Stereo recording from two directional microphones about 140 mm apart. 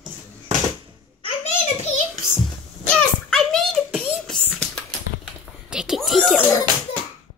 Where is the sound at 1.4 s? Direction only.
55° left (ahead or behind).